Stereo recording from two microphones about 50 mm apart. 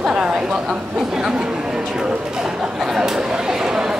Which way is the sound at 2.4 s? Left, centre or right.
Centre.